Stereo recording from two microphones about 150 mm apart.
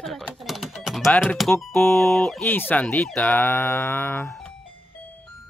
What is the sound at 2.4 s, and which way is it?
Speech, 15° left (ahead or behind).